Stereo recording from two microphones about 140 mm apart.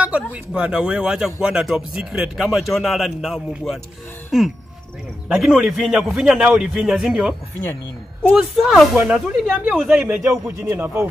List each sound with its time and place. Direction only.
0.0 s a man's voice: 10° right (ahead or behind)